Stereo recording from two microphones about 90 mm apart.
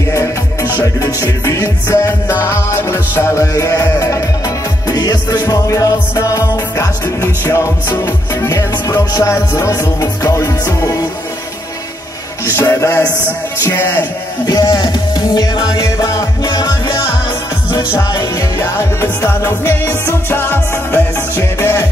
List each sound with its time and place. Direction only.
0.1 s music: 35° left (ahead or behind)
12.4 s music: 35° left (ahead or behind)
14.4 s music: 45° left (ahead or behind)
18.1 s music: 35° left (ahead or behind)